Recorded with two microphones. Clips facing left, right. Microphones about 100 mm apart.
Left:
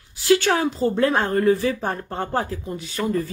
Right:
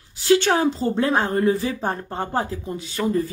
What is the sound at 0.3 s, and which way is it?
Speech, 30° right (ahead or behind).